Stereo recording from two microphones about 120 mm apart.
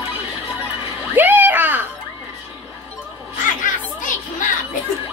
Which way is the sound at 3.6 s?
90° left.